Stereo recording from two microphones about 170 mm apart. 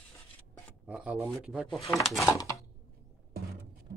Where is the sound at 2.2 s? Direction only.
20° left (ahead or behind).